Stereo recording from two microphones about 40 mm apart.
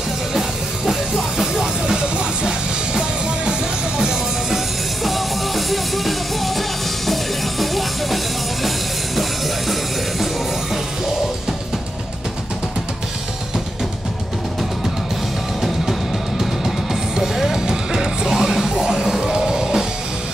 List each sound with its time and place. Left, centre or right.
0.3 s music: centre
1.5 s music: centre
5.0 s music: centre
15.6 s music: centre